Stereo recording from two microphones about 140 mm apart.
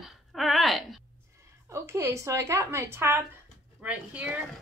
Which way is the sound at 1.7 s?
20° right (ahead or behind).